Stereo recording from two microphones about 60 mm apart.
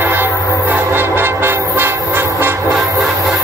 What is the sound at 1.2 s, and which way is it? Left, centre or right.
Train, right.